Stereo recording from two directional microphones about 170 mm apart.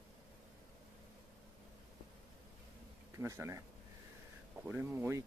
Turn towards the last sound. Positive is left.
turn(degrees=-15)  # may be behind; listen again after turning